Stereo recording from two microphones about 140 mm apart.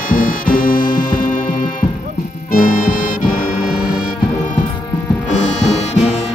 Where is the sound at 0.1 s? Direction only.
85° left.